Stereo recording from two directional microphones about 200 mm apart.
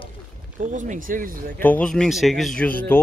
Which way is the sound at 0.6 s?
40° right (ahead or behind).